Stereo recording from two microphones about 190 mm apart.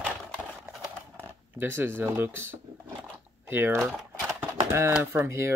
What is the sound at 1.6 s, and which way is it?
Speech, 10° right (ahead or behind).